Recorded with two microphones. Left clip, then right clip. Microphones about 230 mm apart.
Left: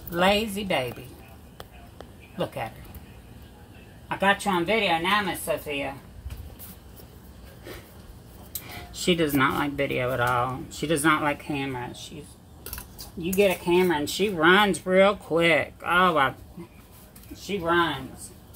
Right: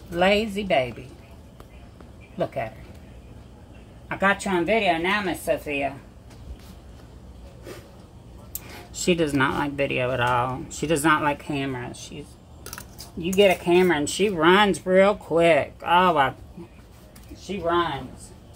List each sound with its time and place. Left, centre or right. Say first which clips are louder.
0.1 s a woman's voice: right 2 dB; centre
2.3 s speech: right 3 dB; centre
4.1 s speech: right 1 dB; centre
9.0 s speech: right 1 dB; centre
13.3 s speech: right 4 dB; centre